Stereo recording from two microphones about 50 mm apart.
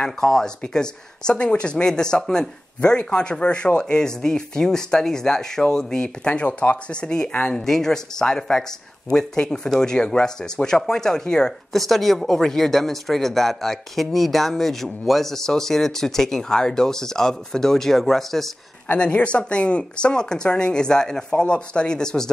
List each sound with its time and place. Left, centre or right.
0.0 s speech: centre
11.7 s speech: centre
18.9 s speech: left